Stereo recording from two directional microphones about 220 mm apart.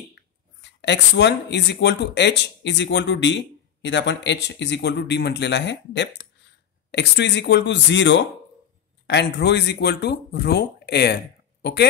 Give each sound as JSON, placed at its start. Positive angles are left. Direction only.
{"t": 0.1, "sound": "speech", "side_deg": 50}